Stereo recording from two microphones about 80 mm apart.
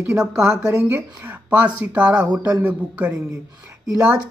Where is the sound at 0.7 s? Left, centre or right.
Right.